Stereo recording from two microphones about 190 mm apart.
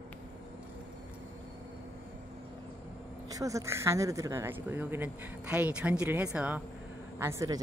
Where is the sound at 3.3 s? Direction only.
15° right (ahead or behind).